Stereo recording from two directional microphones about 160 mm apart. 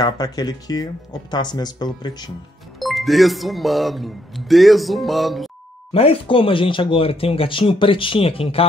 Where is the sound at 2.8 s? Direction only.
Centre (ahead or behind).